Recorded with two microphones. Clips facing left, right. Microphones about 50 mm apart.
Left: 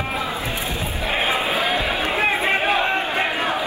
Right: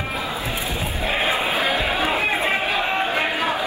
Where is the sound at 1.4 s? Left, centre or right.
Right.